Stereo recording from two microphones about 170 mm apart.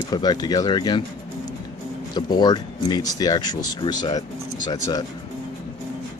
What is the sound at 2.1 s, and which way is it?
Speech, 25° left (ahead or behind).